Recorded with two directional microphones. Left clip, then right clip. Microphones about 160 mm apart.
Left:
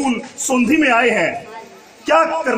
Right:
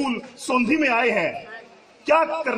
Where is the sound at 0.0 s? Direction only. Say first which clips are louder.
Left 6 dB; 45° right (ahead or behind).